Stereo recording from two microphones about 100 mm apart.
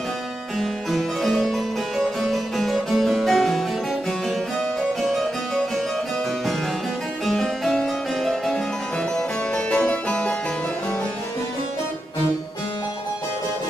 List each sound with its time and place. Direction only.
0.6 s harpsichord: centre (ahead or behind)
5.0 s harpsichord: centre (ahead or behind)
7.2 s music: 5° left (ahead or behind)
9.7 s harpsichord: 10° left (ahead or behind)